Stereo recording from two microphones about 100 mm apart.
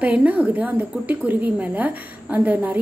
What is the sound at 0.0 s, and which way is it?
A woman's voice, 15° right (ahead or behind).